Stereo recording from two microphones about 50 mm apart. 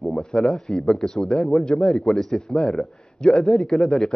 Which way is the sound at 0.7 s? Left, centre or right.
Centre.